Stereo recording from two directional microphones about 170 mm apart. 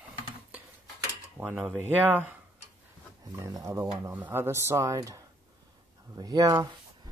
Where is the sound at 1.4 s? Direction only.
10° right (ahead or behind).